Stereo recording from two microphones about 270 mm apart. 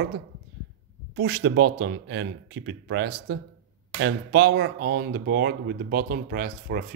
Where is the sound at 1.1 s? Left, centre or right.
Right.